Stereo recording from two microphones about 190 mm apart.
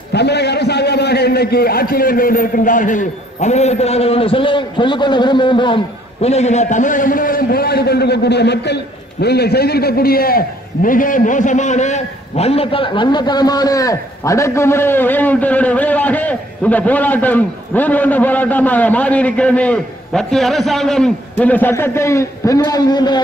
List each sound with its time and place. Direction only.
0.1 s a man's voice: 60° left (ahead or behind); by 5.8 s 25° left (ahead or behind)
6.2 s a man's voice: 35° left (ahead or behind)